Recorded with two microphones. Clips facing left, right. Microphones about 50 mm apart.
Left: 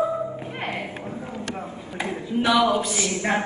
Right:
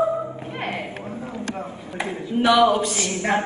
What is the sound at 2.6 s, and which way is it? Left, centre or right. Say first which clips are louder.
Speech: right 3 dB; right.